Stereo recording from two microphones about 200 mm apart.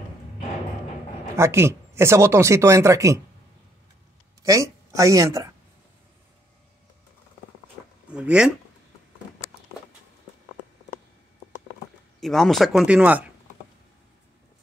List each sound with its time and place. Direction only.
1.3 s speech: 15° right (ahead or behind)
4.4 s a woman's voice: 15° right (ahead or behind)
8.1 s speech: 5° right (ahead or behind)
12.2 s speech: centre (ahead or behind)